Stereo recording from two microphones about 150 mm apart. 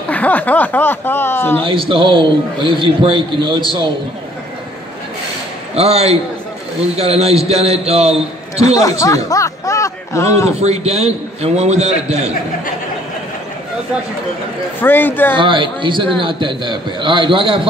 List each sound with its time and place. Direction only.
0.1 s speech: 10° left (ahead or behind)
1.6 s a man's voice: 35° right (ahead or behind)
5.8 s a man's voice: 45° right (ahead or behind)
8.8 s speech: 20° left (ahead or behind)
10.6 s a man's voice: 45° right (ahead or behind)
14.8 s speech: 15° left (ahead or behind)
15.3 s a man's voice: 35° right (ahead or behind)